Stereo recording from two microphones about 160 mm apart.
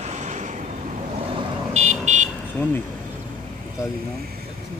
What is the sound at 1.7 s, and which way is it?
Vehicle, 45° right (ahead or behind).